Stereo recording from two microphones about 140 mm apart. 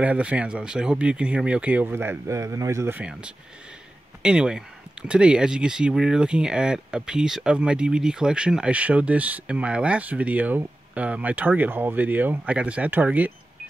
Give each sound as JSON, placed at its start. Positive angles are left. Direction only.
{"t": 0.0, "sound": "speech", "side_deg": -10}